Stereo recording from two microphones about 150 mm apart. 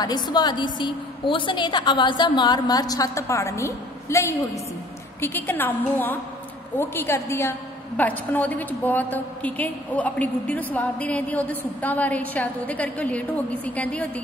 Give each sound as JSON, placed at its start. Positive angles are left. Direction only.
{"t": 0.0, "sound": "a woman's voice", "side_deg": 25}